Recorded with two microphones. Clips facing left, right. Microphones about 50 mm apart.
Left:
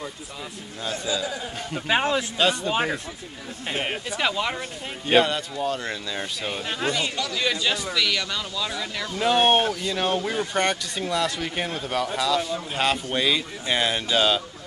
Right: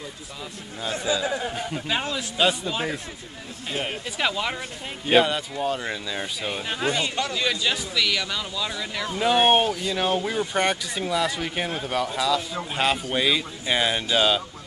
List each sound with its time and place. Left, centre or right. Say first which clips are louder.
0.9 s speech: right 4 dB; right
1.9 s speech: left 7 dB; left
2.3 s speech: even; centre
2.7 s speech: left 3 dB; left
4.2 s speech: even; centre